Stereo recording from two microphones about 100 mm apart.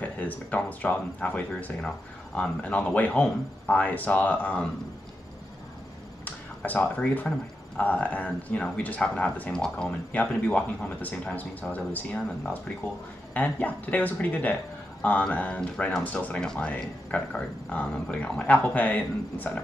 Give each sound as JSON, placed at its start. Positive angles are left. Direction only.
{"t": 0.0, "sound": "speech", "side_deg": 15}
{"t": 6.2, "sound": "speech", "side_deg": 15}